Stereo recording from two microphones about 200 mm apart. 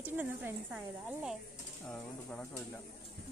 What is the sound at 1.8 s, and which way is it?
Bird, 5° left (ahead or behind).